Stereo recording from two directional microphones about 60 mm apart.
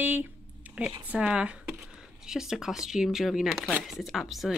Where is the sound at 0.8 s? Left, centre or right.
Centre.